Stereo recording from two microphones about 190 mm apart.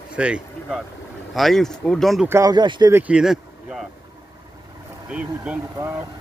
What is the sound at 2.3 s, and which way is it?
Speech, 20° right (ahead or behind).